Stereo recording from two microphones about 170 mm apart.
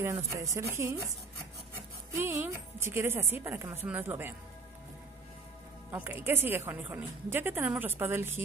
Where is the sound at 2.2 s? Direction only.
15° right (ahead or behind).